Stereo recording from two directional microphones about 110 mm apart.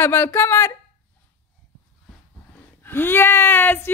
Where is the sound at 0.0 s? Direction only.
20° left (ahead or behind).